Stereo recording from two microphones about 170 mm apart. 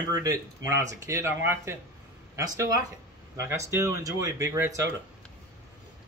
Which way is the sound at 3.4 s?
15° right (ahead or behind).